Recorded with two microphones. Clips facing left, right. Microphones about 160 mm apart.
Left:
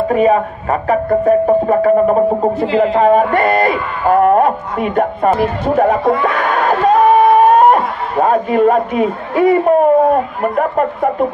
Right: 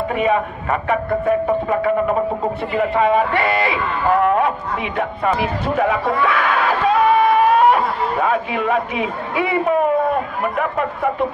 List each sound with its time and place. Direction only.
0.1 s speech: 40° left (ahead or behind)
2.6 s speech: 90° left
3.0 s speech: 45° left (ahead or behind)